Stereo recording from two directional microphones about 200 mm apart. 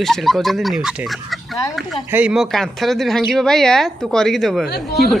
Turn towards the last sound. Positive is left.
turn(degrees=0)  # may be behind; listen again after turning